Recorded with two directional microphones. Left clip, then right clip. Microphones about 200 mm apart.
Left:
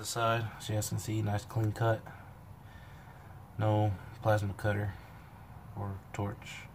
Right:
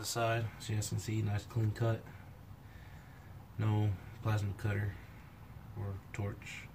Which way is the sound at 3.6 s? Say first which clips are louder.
Left 9 dB; 25° left (ahead or behind).